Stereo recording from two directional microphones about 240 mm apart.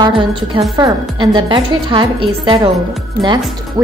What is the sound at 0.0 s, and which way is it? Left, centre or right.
A woman's voice, centre.